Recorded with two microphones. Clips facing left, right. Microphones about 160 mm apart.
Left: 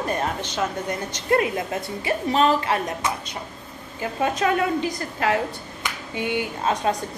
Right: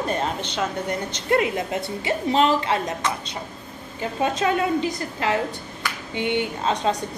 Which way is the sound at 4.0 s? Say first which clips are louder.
Even; 25° right (ahead or behind).